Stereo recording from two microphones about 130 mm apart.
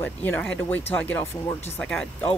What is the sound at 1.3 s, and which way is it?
Speech, 25° left (ahead or behind).